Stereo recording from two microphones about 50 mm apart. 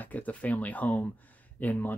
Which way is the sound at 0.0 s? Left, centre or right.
Left.